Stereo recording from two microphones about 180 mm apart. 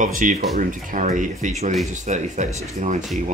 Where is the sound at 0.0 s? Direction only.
45° right (ahead or behind).